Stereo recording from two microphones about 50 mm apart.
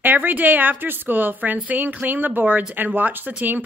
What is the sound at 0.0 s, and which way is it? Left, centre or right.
A woman's voice, right.